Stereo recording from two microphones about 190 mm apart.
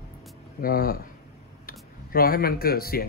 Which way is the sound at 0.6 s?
50° left (ahead or behind).